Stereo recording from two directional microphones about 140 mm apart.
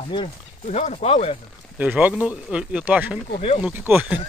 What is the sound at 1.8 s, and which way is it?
A man's voice, 10° right (ahead or behind).